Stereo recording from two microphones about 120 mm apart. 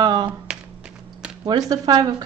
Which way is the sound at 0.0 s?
35° right (ahead or behind).